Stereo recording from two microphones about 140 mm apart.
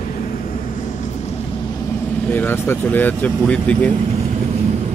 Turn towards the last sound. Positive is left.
turn(degrees=10)  # may be behind; listen again after turning